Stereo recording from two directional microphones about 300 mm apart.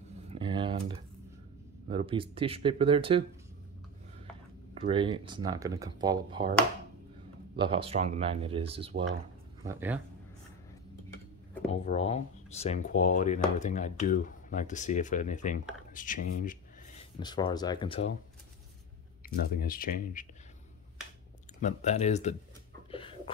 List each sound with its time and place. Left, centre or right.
0.3 s a sound: centre
1.9 s speech: centre
4.7 s speech: centre
7.5 s speech: centre
9.6 s speech: centre
11.8 s speech: centre
17.2 s speech: centre
19.2 s speech: left
21.5 s speech: left
22.8 s a sound: centre